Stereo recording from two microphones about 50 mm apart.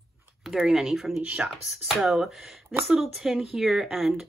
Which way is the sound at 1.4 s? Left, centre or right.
Right.